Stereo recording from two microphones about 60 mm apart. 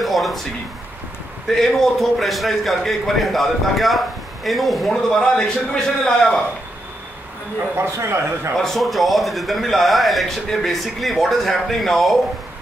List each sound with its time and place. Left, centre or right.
0.0 s a sound: centre
1.5 s a man's voice: centre
7.7 s a man's voice: right
8.5 s speech: centre